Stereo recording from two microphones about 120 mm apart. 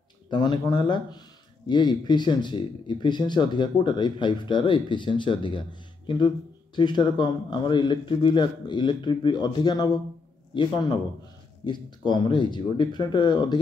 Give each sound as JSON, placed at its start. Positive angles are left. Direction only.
{"t": 0.3, "sound": "speech", "side_deg": 40}